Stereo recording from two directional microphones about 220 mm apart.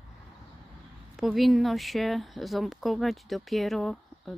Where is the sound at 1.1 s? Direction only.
Centre (ahead or behind).